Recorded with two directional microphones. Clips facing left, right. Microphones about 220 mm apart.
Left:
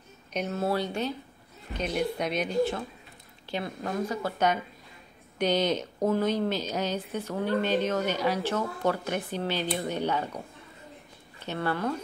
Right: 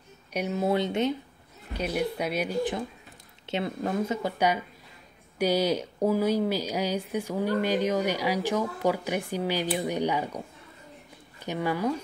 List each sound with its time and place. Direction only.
0.3 s speech: 10° right (ahead or behind)
1.7 s speech: 10° right (ahead or behind)
11.4 s speech: 10° right (ahead or behind)